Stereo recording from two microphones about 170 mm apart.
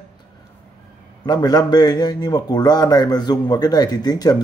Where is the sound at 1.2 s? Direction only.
25° left (ahead or behind).